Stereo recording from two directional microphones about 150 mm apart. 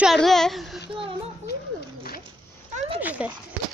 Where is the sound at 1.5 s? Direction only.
90° left.